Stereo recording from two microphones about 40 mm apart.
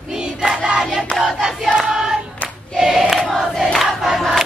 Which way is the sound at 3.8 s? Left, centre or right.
Centre.